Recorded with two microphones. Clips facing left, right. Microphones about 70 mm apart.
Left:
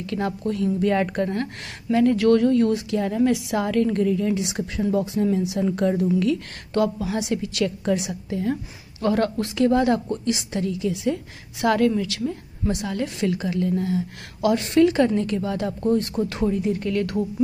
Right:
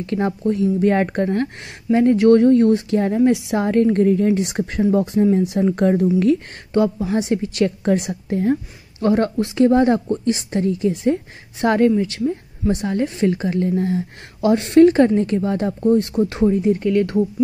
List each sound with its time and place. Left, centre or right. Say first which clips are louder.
0.0 s speech: right 5 dB; right
3.3 s speech: right 4 dB; right
6.7 s speech: right 4 dB; right
9.0 s a woman's voice: right 4 dB; right